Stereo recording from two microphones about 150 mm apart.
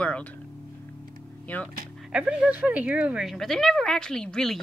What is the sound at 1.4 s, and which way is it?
Speech, 10° left (ahead or behind).